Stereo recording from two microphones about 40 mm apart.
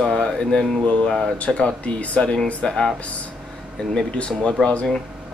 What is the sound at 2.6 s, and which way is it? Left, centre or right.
Speech, centre.